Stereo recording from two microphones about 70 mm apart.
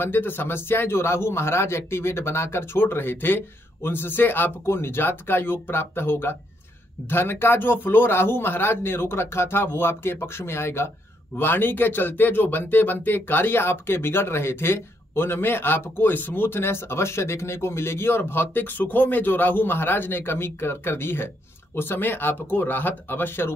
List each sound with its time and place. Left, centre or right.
0.0 s speech: left